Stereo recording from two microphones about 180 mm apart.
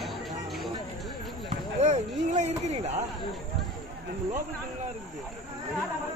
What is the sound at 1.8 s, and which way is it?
Speech, 40° right (ahead or behind).